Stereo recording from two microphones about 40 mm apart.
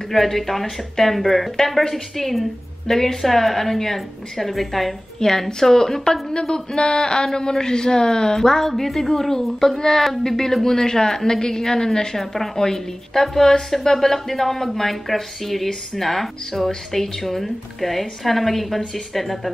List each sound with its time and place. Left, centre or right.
0.1 s speech: centre
5.2 s a woman's voice: centre